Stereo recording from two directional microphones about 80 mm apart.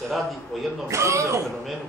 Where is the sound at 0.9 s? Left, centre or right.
Right.